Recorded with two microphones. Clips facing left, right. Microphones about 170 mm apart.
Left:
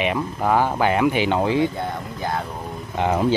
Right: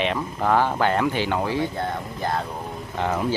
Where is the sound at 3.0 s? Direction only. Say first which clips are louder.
Left 4 dB; 20° left (ahead or behind).